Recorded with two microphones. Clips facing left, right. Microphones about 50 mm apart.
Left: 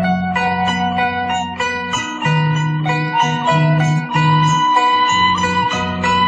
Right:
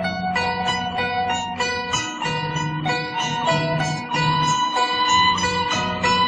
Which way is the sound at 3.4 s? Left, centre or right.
Left.